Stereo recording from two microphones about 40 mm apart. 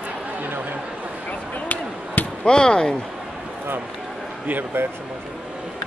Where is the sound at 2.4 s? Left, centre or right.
Left.